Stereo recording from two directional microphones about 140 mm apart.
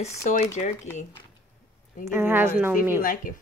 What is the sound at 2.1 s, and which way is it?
Speech, 15° right (ahead or behind).